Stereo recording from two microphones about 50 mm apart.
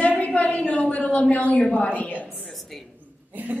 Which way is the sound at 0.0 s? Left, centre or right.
Left.